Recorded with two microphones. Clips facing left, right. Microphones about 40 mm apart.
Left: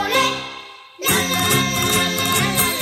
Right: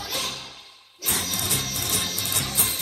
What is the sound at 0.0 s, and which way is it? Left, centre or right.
Music, left.